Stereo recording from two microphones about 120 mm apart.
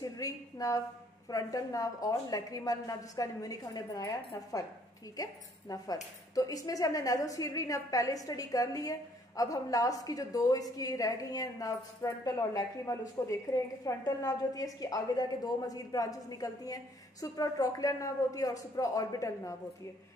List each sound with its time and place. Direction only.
0.0 s a woman's voice: 30° left (ahead or behind)